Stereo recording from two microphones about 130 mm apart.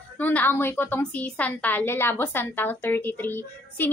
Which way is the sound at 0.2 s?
15° left (ahead or behind).